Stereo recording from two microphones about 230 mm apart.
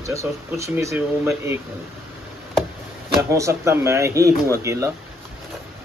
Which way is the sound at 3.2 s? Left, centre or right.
Centre.